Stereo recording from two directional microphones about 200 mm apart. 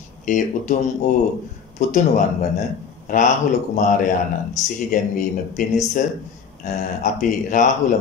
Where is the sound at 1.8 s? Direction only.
35° left (ahead or behind).